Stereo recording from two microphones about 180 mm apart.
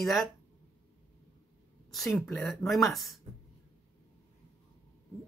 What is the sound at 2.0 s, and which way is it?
Speech, centre (ahead or behind).